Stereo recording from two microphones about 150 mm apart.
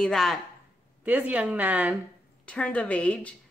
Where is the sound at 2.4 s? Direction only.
10° left (ahead or behind).